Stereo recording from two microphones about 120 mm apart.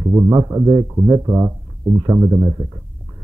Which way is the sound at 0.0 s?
30° right (ahead or behind).